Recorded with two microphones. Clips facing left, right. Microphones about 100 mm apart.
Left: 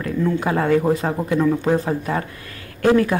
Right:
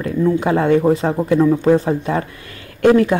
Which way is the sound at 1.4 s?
20° right (ahead or behind).